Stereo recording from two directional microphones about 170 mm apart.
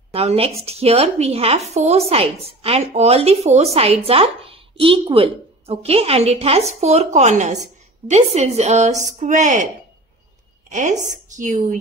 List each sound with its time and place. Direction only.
0.1 s speech: 35° right (ahead or behind)
10.7 s a woman's voice: 45° right (ahead or behind)